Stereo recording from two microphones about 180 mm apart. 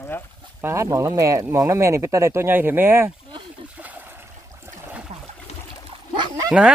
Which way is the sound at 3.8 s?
10° right (ahead or behind).